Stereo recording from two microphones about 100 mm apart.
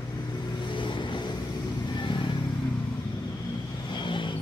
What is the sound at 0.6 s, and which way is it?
Vehicle, 55° left (ahead or behind).